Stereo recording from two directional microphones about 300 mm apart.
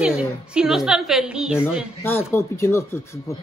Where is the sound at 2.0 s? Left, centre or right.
Centre.